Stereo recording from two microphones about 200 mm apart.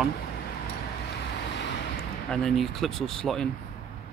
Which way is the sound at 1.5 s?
60° left (ahead or behind).